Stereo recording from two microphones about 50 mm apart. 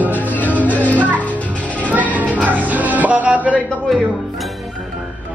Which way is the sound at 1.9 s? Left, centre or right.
Right.